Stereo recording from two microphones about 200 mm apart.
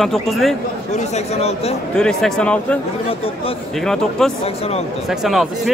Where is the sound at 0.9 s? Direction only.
35° left (ahead or behind).